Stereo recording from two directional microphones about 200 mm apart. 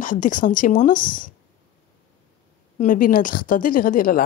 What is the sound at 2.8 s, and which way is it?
A woman's voice, 40° left (ahead or behind).